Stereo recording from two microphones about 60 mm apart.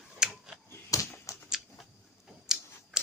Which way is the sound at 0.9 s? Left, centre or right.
Left.